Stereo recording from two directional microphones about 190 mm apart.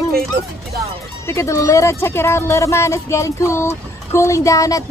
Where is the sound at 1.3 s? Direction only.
15° left (ahead or behind).